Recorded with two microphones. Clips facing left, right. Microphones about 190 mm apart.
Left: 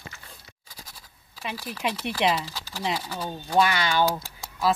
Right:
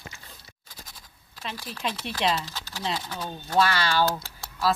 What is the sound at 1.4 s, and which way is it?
Speech, 10° left (ahead or behind).